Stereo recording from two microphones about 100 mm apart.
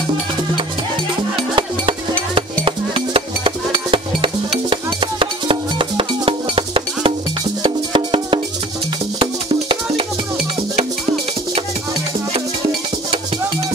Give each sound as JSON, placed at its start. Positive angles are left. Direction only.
{"t": 1.5, "sound": "music", "side_deg": -60}